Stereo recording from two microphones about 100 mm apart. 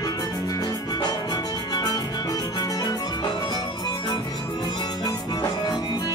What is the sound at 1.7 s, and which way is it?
Music, 40° left (ahead or behind).